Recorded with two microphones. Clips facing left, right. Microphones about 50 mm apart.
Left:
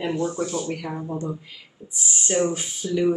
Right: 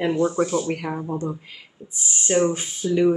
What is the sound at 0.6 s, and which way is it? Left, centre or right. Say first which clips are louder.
Speech: right 3 dB; right.